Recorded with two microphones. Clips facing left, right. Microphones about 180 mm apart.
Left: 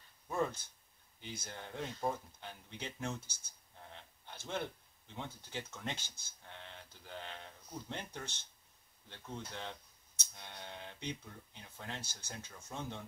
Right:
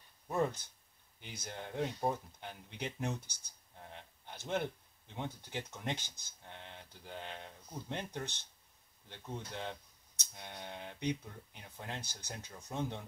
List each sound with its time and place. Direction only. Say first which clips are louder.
0.3 s speech: right 2 dB; 15° right (ahead or behind)